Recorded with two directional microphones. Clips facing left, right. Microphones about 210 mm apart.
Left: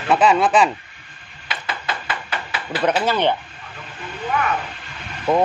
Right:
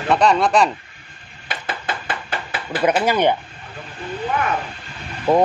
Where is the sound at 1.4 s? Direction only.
50° right (ahead or behind).